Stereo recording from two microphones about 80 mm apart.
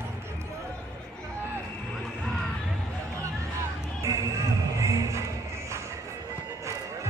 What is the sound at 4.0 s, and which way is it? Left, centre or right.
Music, right.